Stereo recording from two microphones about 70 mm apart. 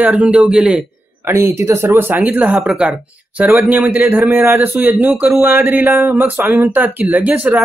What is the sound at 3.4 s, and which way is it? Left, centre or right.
A man's voice, right.